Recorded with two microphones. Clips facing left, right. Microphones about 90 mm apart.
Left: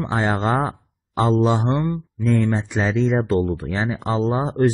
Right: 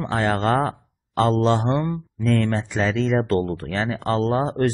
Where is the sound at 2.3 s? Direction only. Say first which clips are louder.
Left 1 dB; 15° left (ahead or behind).